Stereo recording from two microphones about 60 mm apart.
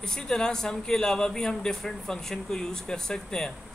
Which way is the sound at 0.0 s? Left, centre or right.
Centre.